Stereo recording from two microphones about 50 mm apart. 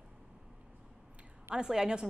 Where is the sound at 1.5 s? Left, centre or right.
Centre.